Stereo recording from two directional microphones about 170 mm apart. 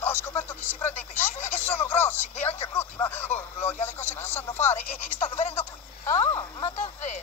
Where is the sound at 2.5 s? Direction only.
35° left (ahead or behind).